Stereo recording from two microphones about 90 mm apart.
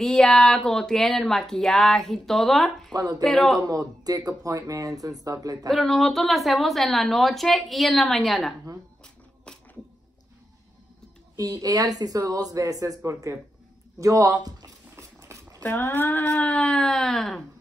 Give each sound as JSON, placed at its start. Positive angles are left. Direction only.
{"t": 0.0, "sound": "speech", "side_deg": 5}
{"t": 2.9, "sound": "speech", "side_deg": -45}
{"t": 3.3, "sound": "speech", "side_deg": 0}
{"t": 3.6, "sound": "speech", "side_deg": -45}
{"t": 5.7, "sound": "speech", "side_deg": 5}
{"t": 9.0, "sound": "a sound", "side_deg": 10}
{"t": 11.3, "sound": "speech", "side_deg": -40}
{"t": 15.3, "sound": "a sound", "side_deg": -35}
{"t": 15.6, "sound": "speech", "side_deg": 20}